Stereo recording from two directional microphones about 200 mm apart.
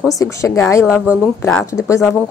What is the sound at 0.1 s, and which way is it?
Speech, 15° left (ahead or behind).